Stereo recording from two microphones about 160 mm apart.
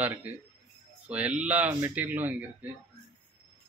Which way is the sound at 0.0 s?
10° right (ahead or behind).